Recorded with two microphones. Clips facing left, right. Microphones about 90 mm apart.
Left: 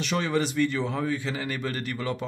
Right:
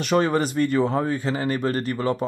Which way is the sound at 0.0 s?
45° right (ahead or behind).